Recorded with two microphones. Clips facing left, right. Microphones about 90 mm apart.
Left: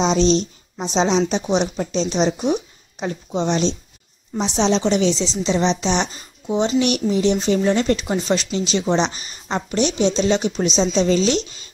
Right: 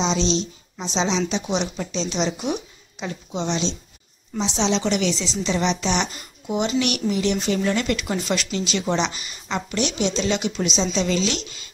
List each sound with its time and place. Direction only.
0.0 s a woman's voice: 50° left (ahead or behind)